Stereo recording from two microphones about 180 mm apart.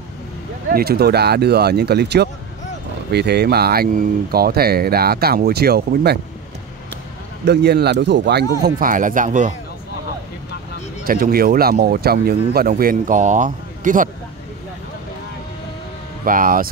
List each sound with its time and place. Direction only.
0.7 s speech: 55° right (ahead or behind)
7.4 s speech: 65° right (ahead or behind); by 9.5 s 45° right (ahead or behind)
11.1 s speech: 55° right (ahead or behind)
16.3 s speech: 50° right (ahead or behind)